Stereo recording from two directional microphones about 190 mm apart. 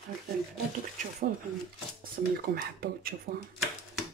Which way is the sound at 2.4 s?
50° right (ahead or behind).